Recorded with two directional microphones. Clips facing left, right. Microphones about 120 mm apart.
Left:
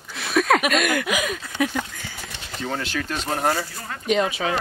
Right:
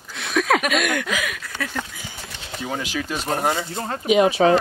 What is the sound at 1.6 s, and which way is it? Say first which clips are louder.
Speech: left 8 dB; 15° left (ahead or behind).